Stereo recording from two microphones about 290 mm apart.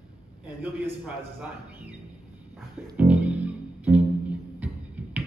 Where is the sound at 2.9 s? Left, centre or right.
Centre.